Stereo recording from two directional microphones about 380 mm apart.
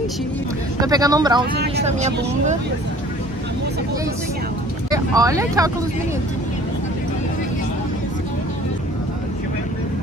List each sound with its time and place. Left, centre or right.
0.7 s speech: centre
1.5 s speech: centre
4.9 s speech: centre